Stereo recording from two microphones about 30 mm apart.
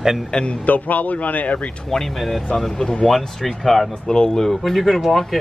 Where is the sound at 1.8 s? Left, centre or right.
Centre.